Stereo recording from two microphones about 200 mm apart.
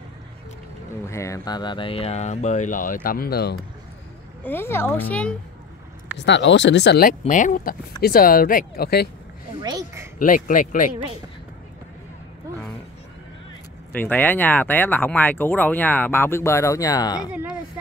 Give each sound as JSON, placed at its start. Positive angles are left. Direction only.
{"t": 1.0, "sound": "speech", "side_deg": 15}
{"t": 4.4, "sound": "speech", "side_deg": 10}
{"t": 6.1, "sound": "speech", "side_deg": 60}
{"t": 9.6, "sound": "speech", "side_deg": -20}
{"t": 10.1, "sound": "speech", "side_deg": 40}
{"t": 13.9, "sound": "speech", "side_deg": 10}
{"t": 17.3, "sound": "a sound", "side_deg": -5}